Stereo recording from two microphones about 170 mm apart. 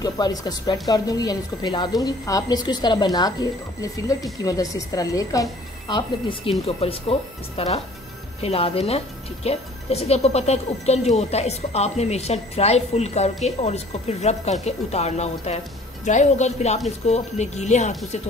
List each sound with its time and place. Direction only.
0.0 s a woman's voice: 20° left (ahead or behind); by 18.2 s 45° left (ahead or behind)